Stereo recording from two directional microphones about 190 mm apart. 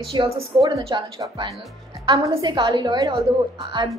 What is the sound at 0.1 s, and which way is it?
A woman's voice, 25° right (ahead or behind).